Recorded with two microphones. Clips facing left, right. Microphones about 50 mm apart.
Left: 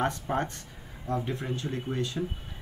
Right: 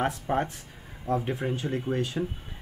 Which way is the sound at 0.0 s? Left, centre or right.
Centre.